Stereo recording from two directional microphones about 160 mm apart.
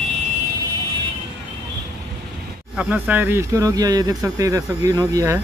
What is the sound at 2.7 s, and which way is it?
Speech, 10° right (ahead or behind).